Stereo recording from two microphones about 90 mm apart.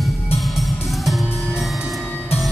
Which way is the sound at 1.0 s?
Centre (ahead or behind).